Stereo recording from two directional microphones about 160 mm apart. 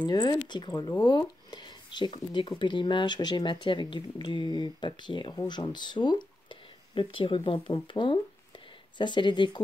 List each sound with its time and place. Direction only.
0.0 s speech: 25° left (ahead or behind)